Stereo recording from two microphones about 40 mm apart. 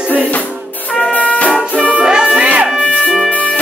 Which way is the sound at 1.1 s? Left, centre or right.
Left.